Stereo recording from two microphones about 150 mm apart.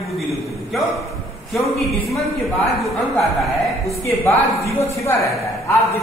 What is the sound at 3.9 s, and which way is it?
A woman's voice, 20° left (ahead or behind).